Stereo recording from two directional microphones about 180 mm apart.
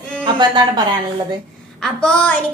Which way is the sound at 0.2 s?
25° right (ahead or behind).